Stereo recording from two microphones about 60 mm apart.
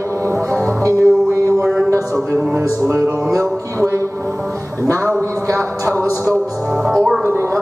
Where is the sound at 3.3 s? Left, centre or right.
Right.